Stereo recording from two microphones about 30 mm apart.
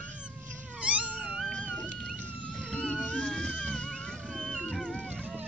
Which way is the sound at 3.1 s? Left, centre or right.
Left.